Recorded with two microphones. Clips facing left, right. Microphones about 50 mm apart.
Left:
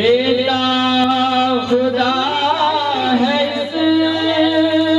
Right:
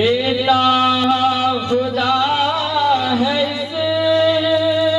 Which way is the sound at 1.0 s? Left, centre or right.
Centre.